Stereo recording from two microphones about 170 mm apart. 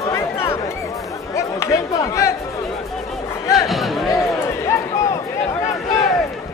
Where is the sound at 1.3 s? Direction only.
15° left (ahead or behind).